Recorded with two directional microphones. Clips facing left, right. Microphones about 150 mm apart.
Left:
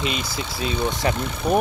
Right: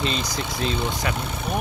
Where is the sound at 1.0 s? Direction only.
35° left (ahead or behind).